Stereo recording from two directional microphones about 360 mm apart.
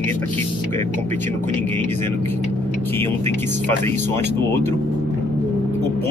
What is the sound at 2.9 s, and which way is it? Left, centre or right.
Speech, centre.